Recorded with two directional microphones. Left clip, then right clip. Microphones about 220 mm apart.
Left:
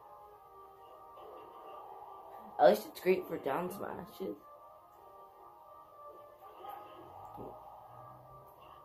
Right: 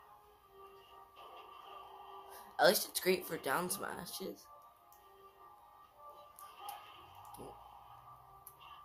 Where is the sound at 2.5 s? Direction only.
50° right (ahead or behind).